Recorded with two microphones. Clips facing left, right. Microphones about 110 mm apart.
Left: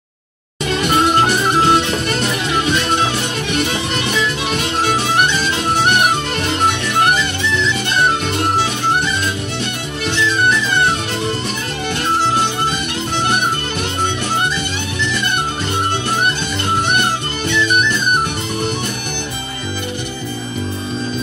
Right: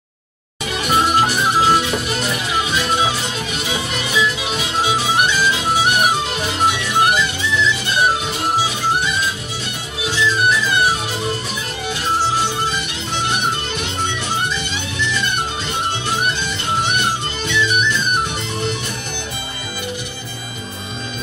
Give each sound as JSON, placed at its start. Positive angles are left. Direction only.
{"t": 1.1, "sound": "music", "side_deg": 60}
{"t": 2.7, "sound": "music", "side_deg": -5}
{"t": 3.9, "sound": "music", "side_deg": 55}
{"t": 16.9, "sound": "music", "side_deg": 50}